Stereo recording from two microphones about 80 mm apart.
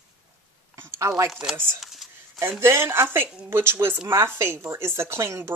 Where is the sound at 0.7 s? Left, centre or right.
Right.